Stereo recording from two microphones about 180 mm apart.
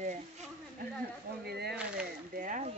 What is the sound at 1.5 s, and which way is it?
Speech, 65° right (ahead or behind).